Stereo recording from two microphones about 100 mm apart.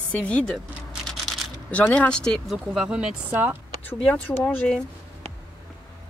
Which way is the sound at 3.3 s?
20° right (ahead or behind).